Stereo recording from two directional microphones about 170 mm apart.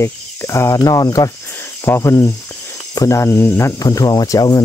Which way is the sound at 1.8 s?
15° left (ahead or behind).